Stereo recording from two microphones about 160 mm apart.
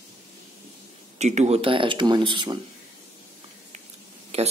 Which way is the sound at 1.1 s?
45° right (ahead or behind).